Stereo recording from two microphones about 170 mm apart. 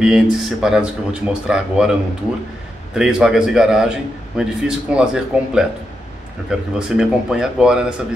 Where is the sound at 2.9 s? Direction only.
5° right (ahead or behind).